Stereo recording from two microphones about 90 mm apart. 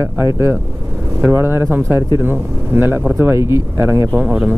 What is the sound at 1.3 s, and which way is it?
Speech, 30° right (ahead or behind).